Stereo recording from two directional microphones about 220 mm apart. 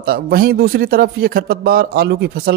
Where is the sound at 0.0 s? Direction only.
40° right (ahead or behind).